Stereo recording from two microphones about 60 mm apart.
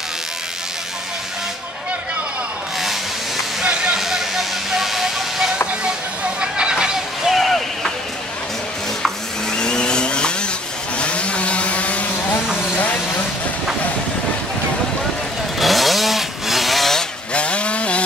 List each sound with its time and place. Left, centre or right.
3.6 s a sound: centre
4.0 s train: centre
6.4 s a sound: centre
7.3 s chop: centre
9.5 s vehicle: centre
11.0 s chainsaw: centre
15.6 s chainsaw: centre
17.3 s chainsaw: centre